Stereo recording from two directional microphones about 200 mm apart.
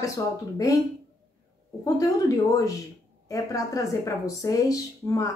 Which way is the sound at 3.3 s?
15° left (ahead or behind).